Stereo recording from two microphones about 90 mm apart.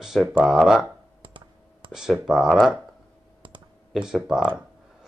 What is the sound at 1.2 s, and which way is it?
Computer keyboard, 65° right (ahead or behind).